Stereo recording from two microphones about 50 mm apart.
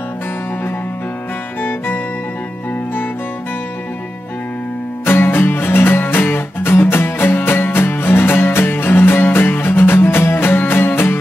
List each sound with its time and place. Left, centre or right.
1.6 s music: left
5.0 s music: left